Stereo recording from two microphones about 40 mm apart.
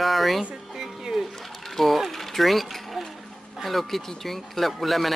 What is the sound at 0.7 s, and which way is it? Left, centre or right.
Music, centre.